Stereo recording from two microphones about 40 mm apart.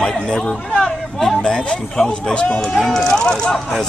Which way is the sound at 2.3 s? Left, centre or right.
Centre.